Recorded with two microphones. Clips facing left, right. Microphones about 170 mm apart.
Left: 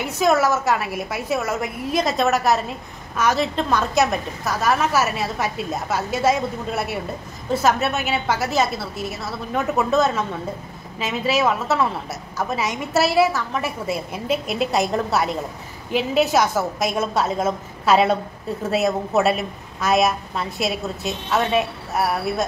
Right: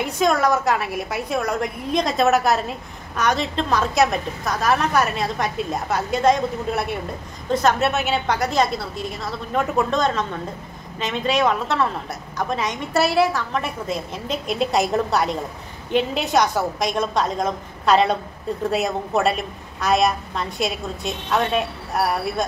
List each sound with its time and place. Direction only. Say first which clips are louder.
0.0 s a woman's voice: left 1 dB; 5° left (ahead or behind)